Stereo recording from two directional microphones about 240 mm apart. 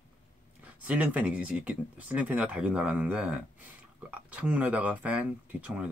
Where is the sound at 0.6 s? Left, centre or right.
Centre.